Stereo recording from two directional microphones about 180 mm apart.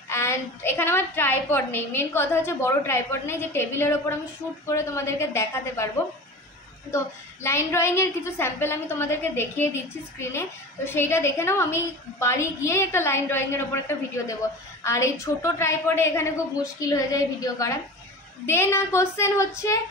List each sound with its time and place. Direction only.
0.1 s a woman's voice: 15° left (ahead or behind)
7.4 s a woman's voice: 15° left (ahead or behind)